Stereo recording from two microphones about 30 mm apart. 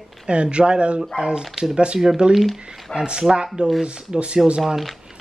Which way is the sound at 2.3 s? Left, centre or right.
Right.